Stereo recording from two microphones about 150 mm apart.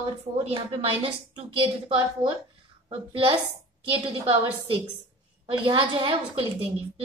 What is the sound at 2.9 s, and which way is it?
A child's voice, 35° right (ahead or behind).